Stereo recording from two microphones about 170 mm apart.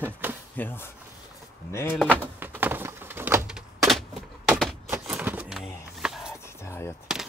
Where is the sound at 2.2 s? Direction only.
10° right (ahead or behind).